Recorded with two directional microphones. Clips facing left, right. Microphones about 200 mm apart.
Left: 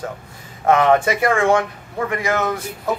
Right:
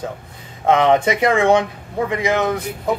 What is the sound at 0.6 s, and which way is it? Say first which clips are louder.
Speech: even; 20° right (ahead or behind).